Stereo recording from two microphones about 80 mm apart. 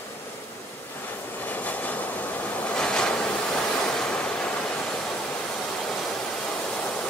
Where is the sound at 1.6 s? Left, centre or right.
Centre.